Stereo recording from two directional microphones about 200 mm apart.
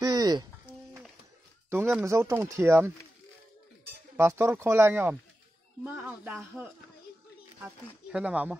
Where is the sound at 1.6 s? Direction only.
10° right (ahead or behind).